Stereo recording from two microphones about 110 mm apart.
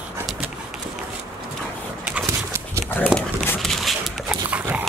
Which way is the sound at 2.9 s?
15° left (ahead or behind).